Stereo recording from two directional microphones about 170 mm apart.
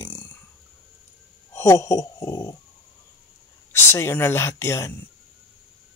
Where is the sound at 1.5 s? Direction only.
20° left (ahead or behind).